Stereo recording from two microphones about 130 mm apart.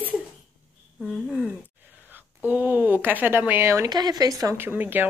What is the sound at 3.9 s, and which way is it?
Speech, 30° right (ahead or behind).